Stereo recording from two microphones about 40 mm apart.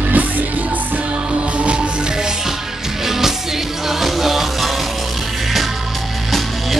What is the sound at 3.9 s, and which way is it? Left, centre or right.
Music, centre.